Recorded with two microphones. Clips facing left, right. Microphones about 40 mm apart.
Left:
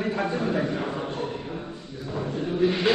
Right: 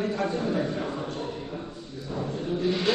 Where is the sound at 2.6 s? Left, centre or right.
Left.